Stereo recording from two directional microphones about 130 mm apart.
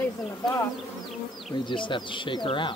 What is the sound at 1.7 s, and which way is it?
Speech, 35° left (ahead or behind).